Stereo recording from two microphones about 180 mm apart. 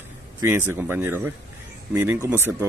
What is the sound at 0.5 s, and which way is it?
Speech, 10° right (ahead or behind).